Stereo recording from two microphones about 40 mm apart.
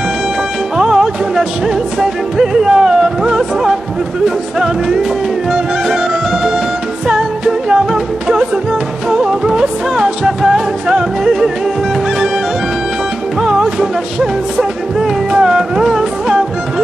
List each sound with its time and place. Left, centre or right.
0.7 s music: centre
7.1 s music: centre
13.4 s music: centre